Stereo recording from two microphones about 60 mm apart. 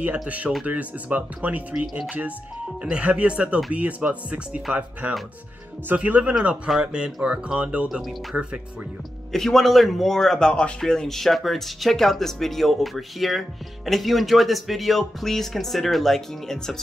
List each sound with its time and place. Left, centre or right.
0.7 s speech: right
8.0 s speech: centre